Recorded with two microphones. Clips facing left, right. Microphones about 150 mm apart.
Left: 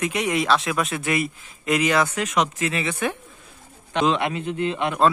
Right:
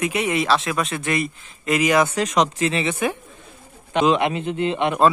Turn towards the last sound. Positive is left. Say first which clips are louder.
# right 3 dB
turn(degrees=-20)  # may be behind; listen again after turning